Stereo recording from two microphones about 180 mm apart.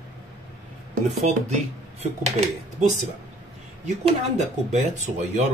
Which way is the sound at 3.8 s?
40° right (ahead or behind).